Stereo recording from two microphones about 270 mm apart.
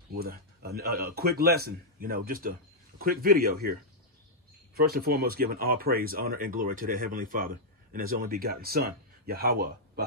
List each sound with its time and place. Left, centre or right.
0.1 s speech: right
4.7 s speech: right